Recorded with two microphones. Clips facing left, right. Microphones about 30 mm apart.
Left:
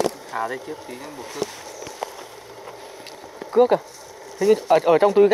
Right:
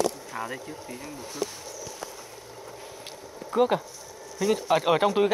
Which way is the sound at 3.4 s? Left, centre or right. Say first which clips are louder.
Left 2 dB; left.